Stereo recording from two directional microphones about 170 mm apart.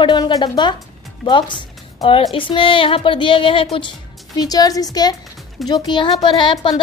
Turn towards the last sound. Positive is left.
turn(degrees=25)  # may be behind; listen again after turning